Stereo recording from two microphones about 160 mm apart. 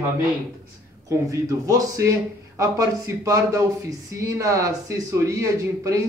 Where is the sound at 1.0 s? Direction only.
20° right (ahead or behind).